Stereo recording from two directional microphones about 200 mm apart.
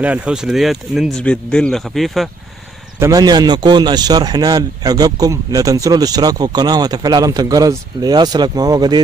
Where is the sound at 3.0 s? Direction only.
20° right (ahead or behind).